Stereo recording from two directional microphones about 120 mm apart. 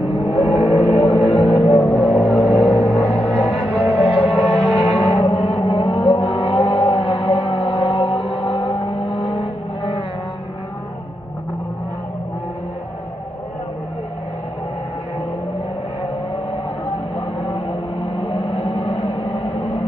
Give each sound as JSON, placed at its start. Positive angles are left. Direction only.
{"t": 0.8, "sound": "music", "side_deg": 55}
{"t": 5.2, "sound": "vehicle", "side_deg": 50}
{"t": 17.4, "sound": "music", "side_deg": 45}